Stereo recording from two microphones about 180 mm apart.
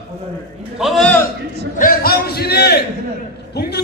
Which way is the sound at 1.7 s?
50° left (ahead or behind).